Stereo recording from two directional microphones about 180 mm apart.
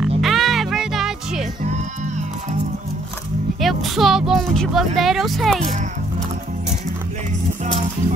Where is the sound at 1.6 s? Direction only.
40° right (ahead or behind).